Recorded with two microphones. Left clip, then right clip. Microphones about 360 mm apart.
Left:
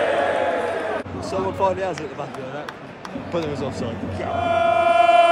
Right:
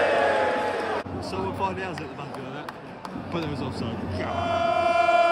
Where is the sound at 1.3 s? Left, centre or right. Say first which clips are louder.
Left 8 dB; centre.